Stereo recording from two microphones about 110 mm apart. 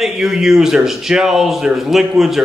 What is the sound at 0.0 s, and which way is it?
A man's voice, 5° right (ahead or behind).